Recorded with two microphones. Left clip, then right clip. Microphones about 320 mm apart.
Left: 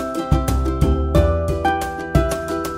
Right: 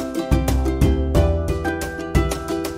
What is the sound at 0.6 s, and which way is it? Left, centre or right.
Music, centre.